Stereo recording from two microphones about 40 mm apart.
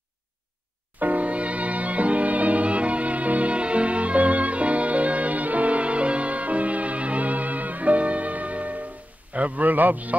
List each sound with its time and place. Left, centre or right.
0.9 s music: right
9.3 s a man's voice: right